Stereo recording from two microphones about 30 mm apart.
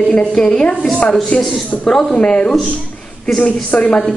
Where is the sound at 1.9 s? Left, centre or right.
Left.